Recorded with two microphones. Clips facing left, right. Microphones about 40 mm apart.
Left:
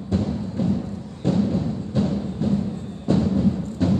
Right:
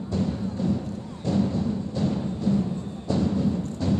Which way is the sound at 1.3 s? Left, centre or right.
Left.